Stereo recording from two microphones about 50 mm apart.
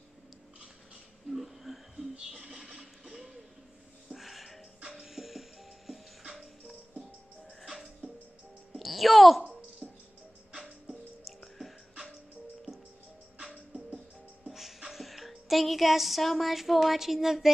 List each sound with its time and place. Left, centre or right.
1.3 s a sound: centre
4.1 s music: centre
7.6 s music: centre
8.7 s a sound: centre
9.8 s music: centre
11.4 s music: centre
14.5 s music: centre